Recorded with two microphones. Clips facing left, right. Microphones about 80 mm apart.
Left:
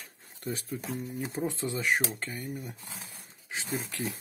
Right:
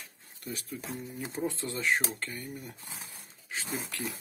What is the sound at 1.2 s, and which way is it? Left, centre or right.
Speech, centre.